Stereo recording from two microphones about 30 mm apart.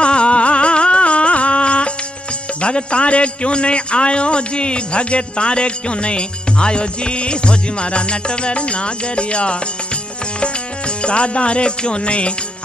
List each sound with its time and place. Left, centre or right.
0.0 s music: left
2.6 s a man's voice: left
11.0 s a man's voice: left